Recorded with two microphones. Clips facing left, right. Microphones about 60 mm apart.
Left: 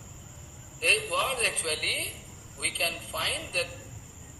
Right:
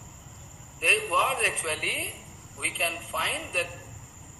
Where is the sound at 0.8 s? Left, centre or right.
Right.